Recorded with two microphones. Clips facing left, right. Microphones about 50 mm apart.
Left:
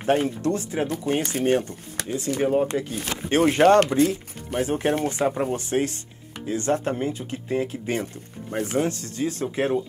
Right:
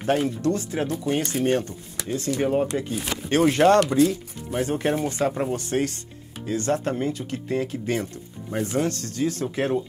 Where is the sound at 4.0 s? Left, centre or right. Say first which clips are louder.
Right 1 dB; left.